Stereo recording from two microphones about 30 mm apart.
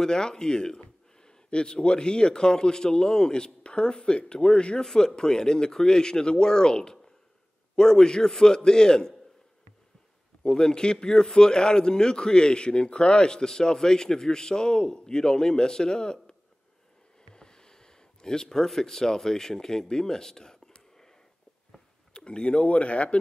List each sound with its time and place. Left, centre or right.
0.0 s a man's voice: left
10.4 s a man's voice: left
17.3 s a sound: left
18.7 s speech: centre
22.1 s speech: left